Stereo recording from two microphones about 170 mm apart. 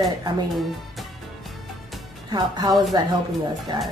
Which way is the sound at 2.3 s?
25° right (ahead or behind).